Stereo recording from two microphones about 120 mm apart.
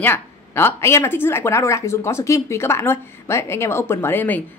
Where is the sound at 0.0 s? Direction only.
20° left (ahead or behind).